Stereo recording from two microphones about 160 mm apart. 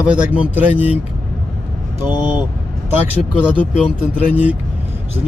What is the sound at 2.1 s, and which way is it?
Speech, 25° left (ahead or behind).